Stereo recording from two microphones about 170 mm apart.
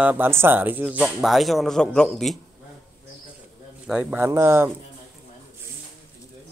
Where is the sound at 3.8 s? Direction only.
10° right (ahead or behind).